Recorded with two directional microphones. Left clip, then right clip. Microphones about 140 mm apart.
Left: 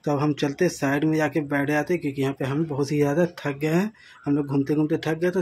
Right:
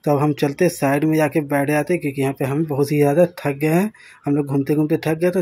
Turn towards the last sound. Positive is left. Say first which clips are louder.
# right 5 dB
turn(degrees=-30)  # may be behind; listen again after turning